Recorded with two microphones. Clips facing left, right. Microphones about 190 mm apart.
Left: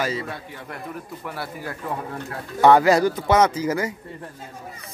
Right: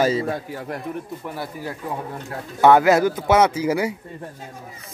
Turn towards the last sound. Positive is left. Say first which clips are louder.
# right 2 dB
turn(degrees=-10)  # may be behind; listen again after turning